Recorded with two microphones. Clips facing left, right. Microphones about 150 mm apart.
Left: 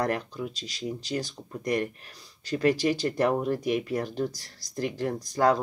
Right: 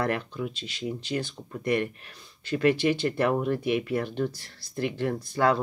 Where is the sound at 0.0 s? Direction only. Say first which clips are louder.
Even; 40° left (ahead or behind).